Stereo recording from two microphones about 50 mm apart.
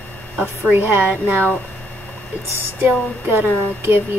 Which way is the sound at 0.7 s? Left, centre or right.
Right.